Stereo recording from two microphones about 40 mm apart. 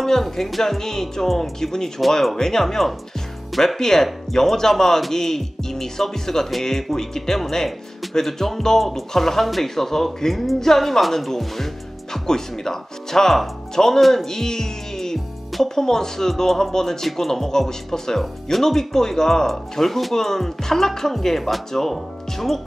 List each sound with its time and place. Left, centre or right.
0.0 s speech: centre